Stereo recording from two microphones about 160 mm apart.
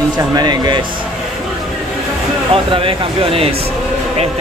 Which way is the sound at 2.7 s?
35° right (ahead or behind).